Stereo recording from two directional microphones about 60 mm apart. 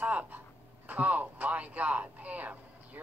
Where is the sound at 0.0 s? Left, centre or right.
Right.